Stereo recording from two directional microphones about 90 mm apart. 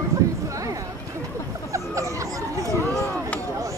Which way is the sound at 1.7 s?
35° right (ahead or behind).